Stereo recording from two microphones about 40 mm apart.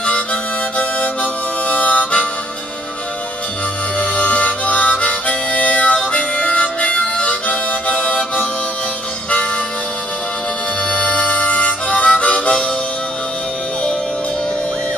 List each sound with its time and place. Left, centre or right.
0.0 s harmonica: left
4.0 s harmonica: left
10.9 s harmonica: left